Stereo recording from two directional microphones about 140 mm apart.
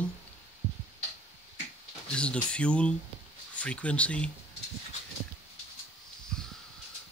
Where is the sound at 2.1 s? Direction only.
10° left (ahead or behind).